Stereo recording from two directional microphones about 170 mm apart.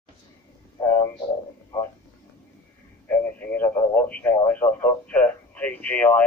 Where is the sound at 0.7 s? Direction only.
15° left (ahead or behind).